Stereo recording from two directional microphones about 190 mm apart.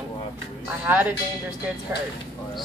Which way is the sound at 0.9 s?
10° right (ahead or behind).